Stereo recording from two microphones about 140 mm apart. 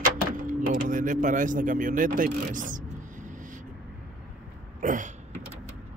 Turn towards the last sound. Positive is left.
turn(degrees=-65)  # may be behind; listen again after turning